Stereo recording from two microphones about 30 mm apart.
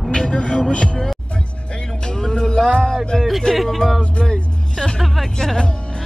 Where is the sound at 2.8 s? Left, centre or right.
Centre.